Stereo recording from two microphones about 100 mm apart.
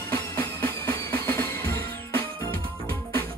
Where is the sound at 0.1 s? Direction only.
25° left (ahead or behind).